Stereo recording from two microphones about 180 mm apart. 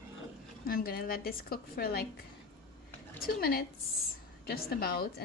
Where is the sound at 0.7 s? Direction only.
55° left (ahead or behind).